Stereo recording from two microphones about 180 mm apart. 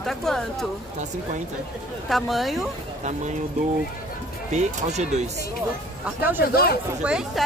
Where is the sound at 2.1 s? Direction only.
Centre (ahead or behind).